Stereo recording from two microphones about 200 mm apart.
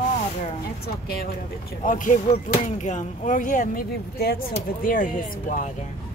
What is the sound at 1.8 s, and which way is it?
Speech, 40° left (ahead or behind).